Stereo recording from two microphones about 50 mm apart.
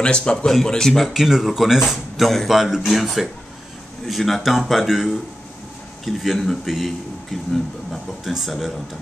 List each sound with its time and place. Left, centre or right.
0.0 s speech: centre